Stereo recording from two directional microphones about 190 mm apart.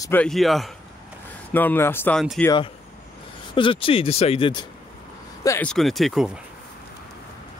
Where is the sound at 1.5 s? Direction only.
10° left (ahead or behind).